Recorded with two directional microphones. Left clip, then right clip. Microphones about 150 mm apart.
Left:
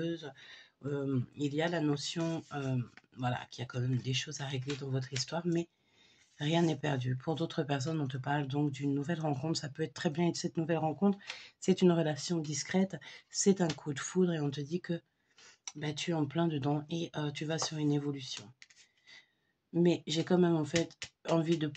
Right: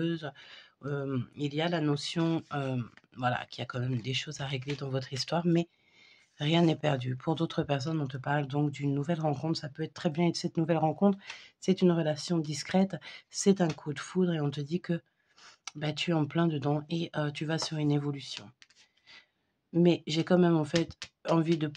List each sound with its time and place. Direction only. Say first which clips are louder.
0.0 s speech: right 4 dB; 55° right (ahead or behind)
4.8 s speech: right 4 dB; 60° right (ahead or behind)
6.3 s speech: right 4 dB; 40° right (ahead or behind)
11.3 s speech: right 1 dB; 25° right (ahead or behind)
12.2 s speech: right 3 dB; 45° right (ahead or behind)
13.7 s speech: right 1 dB; 25° right (ahead or behind); by 16.3 s 55° right (ahead or behind)
16.3 s speech: right 3 dB; 35° right (ahead or behind)